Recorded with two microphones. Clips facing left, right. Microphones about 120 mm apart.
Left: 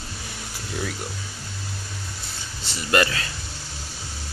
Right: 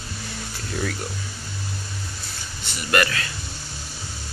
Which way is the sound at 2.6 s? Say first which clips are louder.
Left 1 dB; 25° left (ahead or behind).